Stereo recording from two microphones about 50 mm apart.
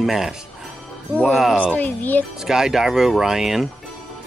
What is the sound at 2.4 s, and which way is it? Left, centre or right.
Speech, centre.